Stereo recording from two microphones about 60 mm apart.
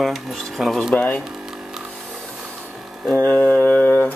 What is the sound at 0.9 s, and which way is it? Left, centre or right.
Speech, left.